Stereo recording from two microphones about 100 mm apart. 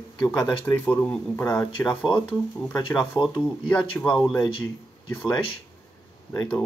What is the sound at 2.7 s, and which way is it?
Speech, 40° left (ahead or behind).